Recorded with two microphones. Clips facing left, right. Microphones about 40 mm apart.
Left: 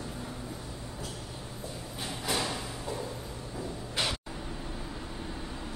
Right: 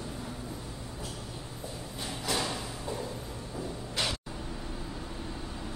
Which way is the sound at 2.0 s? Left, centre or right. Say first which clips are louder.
Even; centre.